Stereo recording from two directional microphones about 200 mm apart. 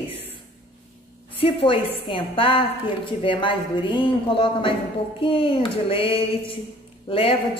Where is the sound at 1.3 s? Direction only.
25° left (ahead or behind).